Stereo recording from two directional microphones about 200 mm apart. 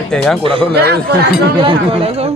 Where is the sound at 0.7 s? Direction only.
55° right (ahead or behind).